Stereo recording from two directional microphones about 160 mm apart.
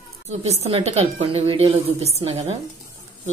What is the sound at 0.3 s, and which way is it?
A woman's voice, 40° right (ahead or behind).